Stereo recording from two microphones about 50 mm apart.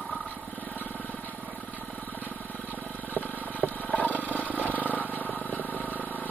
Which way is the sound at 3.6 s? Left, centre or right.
Left.